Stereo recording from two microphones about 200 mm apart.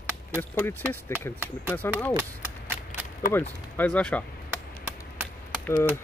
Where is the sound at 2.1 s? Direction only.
10° right (ahead or behind).